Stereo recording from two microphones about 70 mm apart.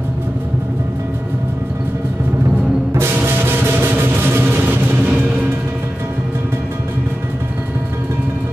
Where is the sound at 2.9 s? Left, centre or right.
Right.